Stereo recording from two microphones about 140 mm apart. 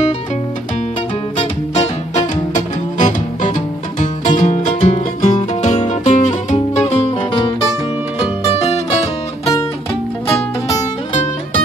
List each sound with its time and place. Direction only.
1.8 s music: 60° left (ahead or behind)